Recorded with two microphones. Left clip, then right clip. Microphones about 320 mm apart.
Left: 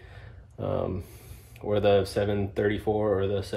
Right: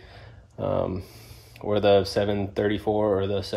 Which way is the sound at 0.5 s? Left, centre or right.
Right.